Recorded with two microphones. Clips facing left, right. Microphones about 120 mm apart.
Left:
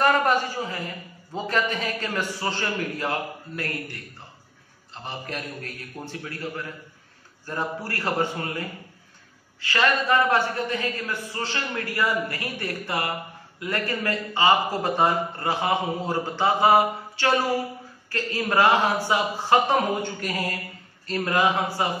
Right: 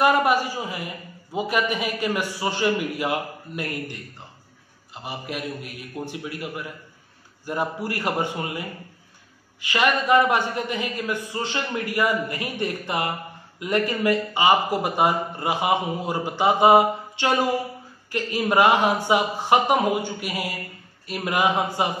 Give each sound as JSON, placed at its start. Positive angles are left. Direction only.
{"t": 0.0, "sound": "a man's voice", "side_deg": -10}